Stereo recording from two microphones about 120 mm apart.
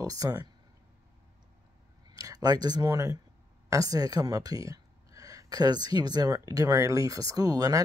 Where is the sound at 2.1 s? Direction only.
30° right (ahead or behind).